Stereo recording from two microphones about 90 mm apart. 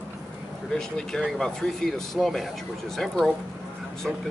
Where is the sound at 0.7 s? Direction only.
5° left (ahead or behind).